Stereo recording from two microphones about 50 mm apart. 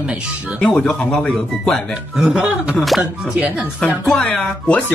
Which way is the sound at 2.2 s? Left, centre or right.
Centre.